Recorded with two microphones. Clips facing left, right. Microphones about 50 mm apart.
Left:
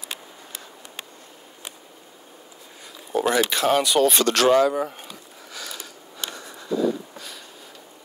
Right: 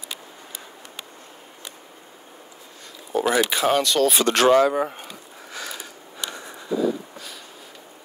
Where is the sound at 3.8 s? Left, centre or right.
Centre.